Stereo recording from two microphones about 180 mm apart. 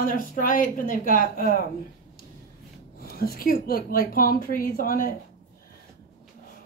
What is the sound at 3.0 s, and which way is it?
A woman's voice, 55° left (ahead or behind).